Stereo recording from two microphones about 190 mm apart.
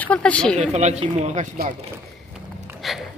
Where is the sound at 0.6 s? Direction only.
35° right (ahead or behind).